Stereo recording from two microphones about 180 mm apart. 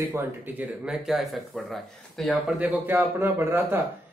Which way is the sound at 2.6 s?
10° right (ahead or behind).